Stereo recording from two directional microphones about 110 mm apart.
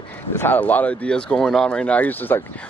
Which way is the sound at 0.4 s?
15° left (ahead or behind).